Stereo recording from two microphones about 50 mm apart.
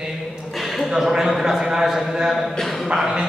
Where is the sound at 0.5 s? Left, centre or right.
Centre.